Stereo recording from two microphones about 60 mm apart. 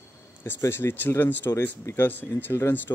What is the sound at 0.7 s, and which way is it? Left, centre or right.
Speech, left.